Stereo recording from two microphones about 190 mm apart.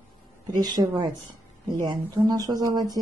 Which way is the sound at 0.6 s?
20° right (ahead or behind).